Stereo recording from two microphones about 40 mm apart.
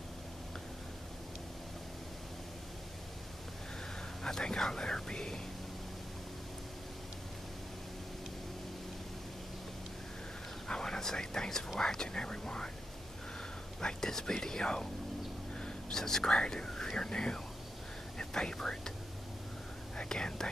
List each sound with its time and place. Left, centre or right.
4.2 s whispering: centre
10.7 s whispering: centre
11.8 s speech: centre
13.7 s speech: centre
15.6 s whispering: centre
16.3 s speech: centre
20.0 s speech: centre